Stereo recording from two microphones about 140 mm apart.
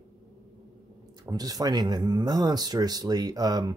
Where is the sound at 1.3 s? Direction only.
25° right (ahead or behind).